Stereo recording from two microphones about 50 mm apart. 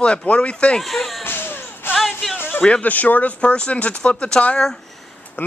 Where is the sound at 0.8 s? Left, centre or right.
Centre.